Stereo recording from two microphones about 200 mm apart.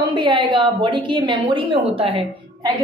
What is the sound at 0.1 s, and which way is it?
A woman's voice, 25° right (ahead or behind).